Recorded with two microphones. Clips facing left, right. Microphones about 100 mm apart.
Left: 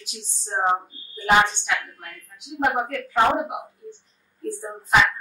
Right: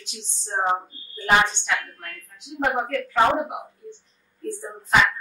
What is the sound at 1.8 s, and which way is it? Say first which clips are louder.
Speech: right 1 dB; 15° left (ahead or behind).